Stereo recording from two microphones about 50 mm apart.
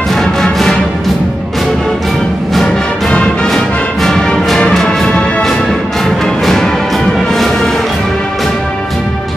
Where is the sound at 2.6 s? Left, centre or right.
Centre.